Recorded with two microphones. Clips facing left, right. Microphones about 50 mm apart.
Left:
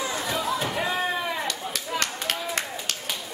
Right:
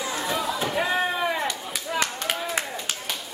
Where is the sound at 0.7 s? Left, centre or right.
Centre.